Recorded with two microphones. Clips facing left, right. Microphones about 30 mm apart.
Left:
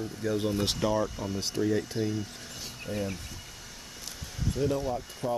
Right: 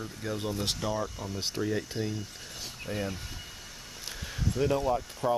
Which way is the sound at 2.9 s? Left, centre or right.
Right.